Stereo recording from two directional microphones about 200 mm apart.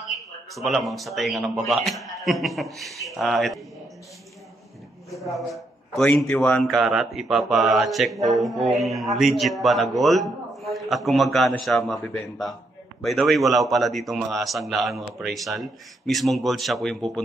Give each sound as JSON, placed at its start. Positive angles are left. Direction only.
{"t": 0.6, "sound": "a man's voice", "side_deg": 0}
{"t": 5.1, "sound": "a man's voice", "side_deg": 0}
{"t": 13.0, "sound": "a man's voice", "side_deg": 0}